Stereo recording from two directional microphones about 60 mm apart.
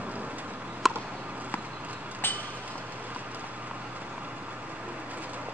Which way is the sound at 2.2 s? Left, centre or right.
Left.